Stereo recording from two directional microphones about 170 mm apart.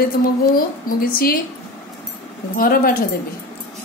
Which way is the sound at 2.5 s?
60° left (ahead or behind).